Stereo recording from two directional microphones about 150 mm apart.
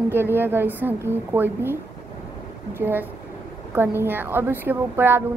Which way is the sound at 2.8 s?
15° right (ahead or behind).